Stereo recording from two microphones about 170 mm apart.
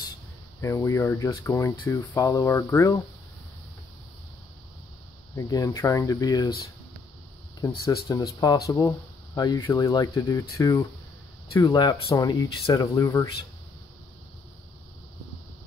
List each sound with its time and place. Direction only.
0.6 s speech: 15° left (ahead or behind)
5.3 s speech: 20° left (ahead or behind)
7.6 s speech: 20° left (ahead or behind)